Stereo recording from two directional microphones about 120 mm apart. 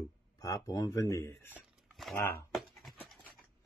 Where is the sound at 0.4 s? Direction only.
30° left (ahead or behind).